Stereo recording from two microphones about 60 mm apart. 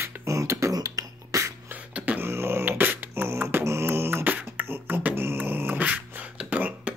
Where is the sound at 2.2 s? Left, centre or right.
Right.